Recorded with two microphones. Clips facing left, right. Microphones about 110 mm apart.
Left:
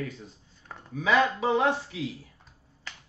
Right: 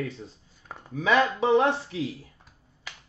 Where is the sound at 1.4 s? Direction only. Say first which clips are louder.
Right 3 dB; 30° right (ahead or behind).